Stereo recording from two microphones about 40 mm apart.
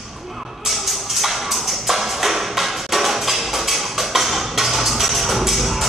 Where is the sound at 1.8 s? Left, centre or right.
Centre.